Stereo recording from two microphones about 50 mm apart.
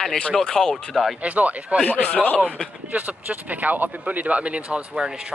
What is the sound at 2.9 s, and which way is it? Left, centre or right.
Speech, right.